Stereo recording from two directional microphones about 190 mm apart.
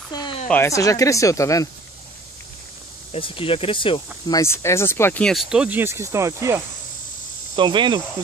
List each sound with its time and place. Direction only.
0.1 s a sound: 20° left (ahead or behind)
0.5 s speech: 15° left (ahead or behind)
3.1 s speech: 30° left (ahead or behind)
4.3 s speech: 15° left (ahead or behind); by 6.6 s 15° right (ahead or behind)
7.5 s cricket: 25° right (ahead or behind)